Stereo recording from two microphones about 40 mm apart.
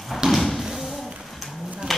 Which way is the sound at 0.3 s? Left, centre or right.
Centre.